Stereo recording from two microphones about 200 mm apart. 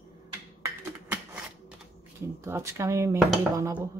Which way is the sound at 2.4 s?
15° right (ahead or behind).